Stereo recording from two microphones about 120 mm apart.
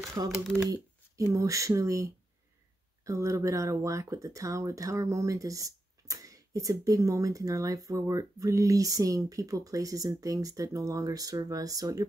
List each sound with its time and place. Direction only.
0.0 s speech: 30° right (ahead or behind)